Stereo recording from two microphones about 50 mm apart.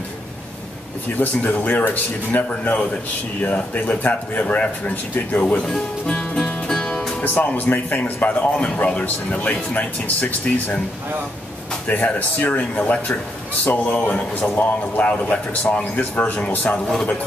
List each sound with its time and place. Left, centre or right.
1.2 s speech: left
6.0 s music: centre
7.2 s speech: left
11.9 s speech: left